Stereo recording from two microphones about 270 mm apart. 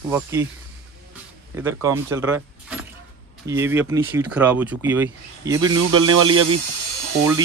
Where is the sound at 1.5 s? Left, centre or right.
Centre.